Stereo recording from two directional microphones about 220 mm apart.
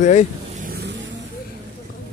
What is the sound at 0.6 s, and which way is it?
Vehicle, 45° right (ahead or behind).